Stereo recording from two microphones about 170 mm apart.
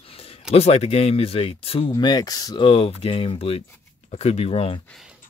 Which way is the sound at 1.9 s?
25° left (ahead or behind).